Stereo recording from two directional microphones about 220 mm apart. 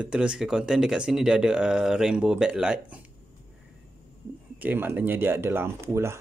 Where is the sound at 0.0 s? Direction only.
5° right (ahead or behind).